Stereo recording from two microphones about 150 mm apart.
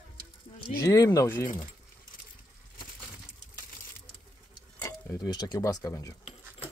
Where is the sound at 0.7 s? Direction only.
25° left (ahead or behind).